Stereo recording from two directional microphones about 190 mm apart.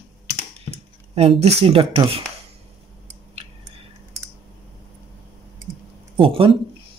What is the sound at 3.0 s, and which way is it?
Chewing, 30° right (ahead or behind).